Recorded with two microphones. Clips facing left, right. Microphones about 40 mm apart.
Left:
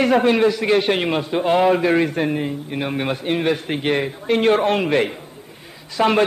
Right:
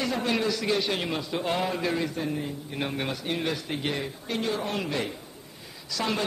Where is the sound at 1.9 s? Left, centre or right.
Left.